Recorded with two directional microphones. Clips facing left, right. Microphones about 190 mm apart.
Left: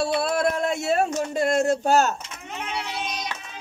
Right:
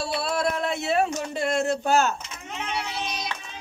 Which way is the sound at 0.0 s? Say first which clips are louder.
Left 4 dB; 50° left (ahead or behind).